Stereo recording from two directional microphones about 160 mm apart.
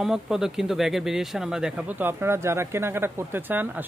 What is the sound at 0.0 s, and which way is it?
Speech, 5° right (ahead or behind).